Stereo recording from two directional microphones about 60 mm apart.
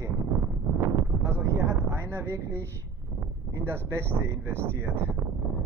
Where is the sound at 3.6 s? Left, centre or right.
Right.